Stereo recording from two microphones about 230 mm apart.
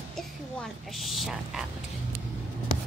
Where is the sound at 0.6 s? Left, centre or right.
Centre.